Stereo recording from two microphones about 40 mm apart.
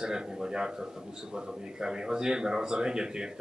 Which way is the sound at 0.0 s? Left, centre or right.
Centre.